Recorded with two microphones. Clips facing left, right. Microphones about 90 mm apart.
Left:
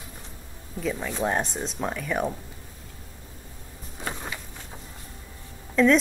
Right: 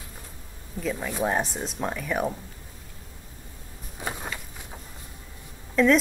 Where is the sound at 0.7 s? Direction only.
Centre (ahead or behind).